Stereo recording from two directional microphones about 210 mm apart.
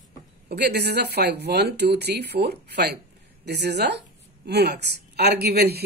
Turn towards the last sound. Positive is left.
turn(degrees=-50)  # may be behind; listen again after turning